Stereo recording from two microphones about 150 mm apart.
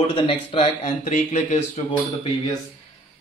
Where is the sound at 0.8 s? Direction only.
55° left (ahead or behind).